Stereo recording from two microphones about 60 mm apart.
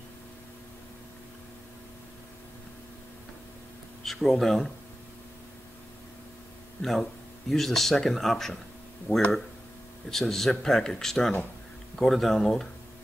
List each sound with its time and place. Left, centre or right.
4.0 s speech: centre
6.8 s speech: centre
9.1 s speech: left
10.0 s speech: centre